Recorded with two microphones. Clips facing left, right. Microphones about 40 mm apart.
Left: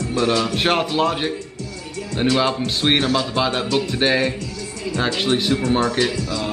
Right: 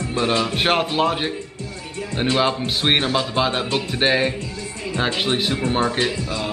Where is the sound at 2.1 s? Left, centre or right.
Right.